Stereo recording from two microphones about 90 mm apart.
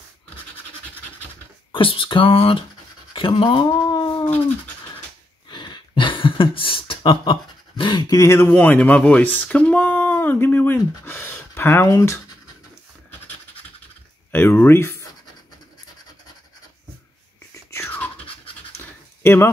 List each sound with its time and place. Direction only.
1.7 s speech: 75° left (ahead or behind)
3.1 s a sound: 70° left (ahead or behind)
5.5 s beatboxing: 55° left (ahead or behind)
8.1 s speech: 35° left (ahead or behind)
8.5 s speech: 20° left (ahead or behind)
14.3 s speech: 25° left (ahead or behind)
17.9 s a sound: 15° left (ahead or behind)
19.2 s speech: 25° left (ahead or behind)